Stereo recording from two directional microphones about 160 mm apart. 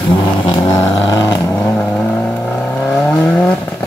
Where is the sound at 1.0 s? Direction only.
25° left (ahead or behind); by 3.6 s 10° left (ahead or behind).